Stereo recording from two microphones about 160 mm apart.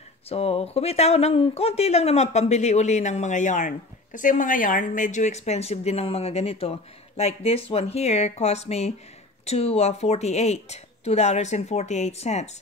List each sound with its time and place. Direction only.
0.3 s speech: 40° left (ahead or behind)